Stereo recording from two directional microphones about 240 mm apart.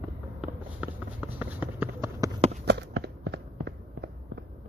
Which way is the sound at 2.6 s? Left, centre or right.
Right.